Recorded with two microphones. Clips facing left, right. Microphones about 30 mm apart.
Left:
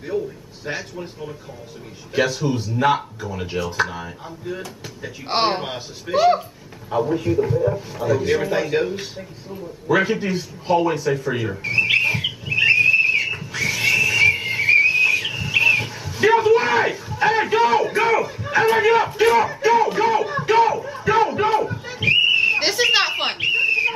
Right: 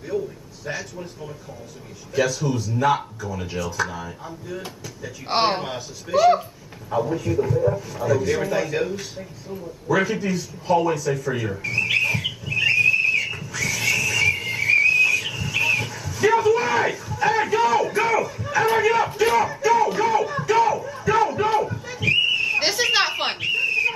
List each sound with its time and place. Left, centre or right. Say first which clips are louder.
0.1 s a man's voice: left 1 dB; left
5.3 s a man's voice: left 1 dB; centre
5.8 s a man's voice: even; left; by 7.8 s centre
7.9 s speech: left 2 dB; left
11.6 s a sound: left 4 dB; left
18.8 s speech: left 3 dB; left
21.6 s a sound: left 3 dB; left
22.6 s a sound: left 2 dB; centre
23.4 s bird: left 3 dB; left